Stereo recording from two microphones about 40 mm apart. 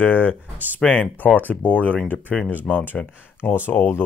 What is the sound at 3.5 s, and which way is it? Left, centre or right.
Speech, left.